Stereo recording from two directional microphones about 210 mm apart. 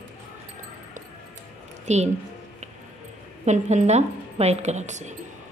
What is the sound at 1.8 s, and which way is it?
Speech, 35° right (ahead or behind).